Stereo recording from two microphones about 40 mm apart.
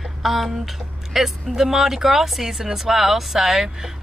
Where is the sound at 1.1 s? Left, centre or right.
Centre.